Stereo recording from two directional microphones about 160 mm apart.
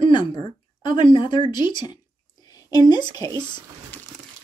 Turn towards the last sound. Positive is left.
turn(degrees=25)  # may be behind; listen again after turning